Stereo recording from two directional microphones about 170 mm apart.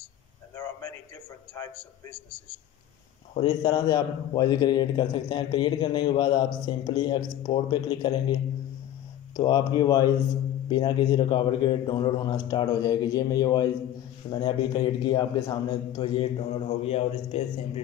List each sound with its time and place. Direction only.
1.5 s a man's voice: 15° left (ahead or behind)
3.3 s a man's voice: 30° left (ahead or behind)
9.4 s a man's voice: 25° left (ahead or behind)